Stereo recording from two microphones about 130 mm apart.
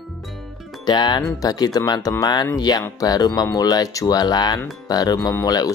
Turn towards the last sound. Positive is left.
turn(degrees=25)  # may be behind; listen again after turning